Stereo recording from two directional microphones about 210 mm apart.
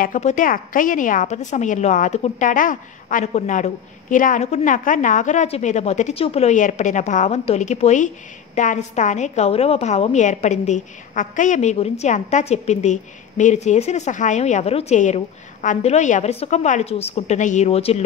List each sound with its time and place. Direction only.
0.0 s a woman's voice: 35° left (ahead or behind)